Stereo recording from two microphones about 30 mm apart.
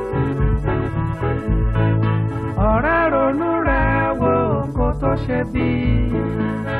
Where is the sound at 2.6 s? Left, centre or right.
Centre.